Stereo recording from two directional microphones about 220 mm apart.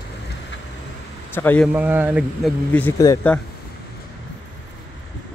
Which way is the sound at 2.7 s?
10° left (ahead or behind).